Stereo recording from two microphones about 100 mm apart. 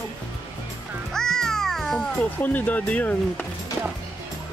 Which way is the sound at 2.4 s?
15° left (ahead or behind).